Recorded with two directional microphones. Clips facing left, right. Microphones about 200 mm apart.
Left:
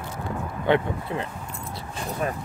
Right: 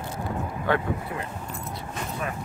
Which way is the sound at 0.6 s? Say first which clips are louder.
Left 4 dB; 20° left (ahead or behind).